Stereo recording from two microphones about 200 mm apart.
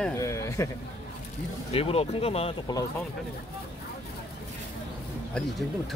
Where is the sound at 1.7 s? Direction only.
30° left (ahead or behind).